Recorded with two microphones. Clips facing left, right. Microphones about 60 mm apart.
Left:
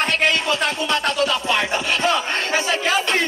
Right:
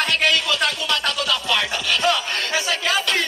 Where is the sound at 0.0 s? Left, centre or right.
Left.